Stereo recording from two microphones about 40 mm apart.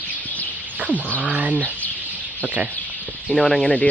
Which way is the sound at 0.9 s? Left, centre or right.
Left.